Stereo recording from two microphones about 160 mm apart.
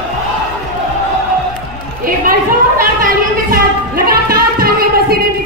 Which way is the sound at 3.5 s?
70° right (ahead or behind).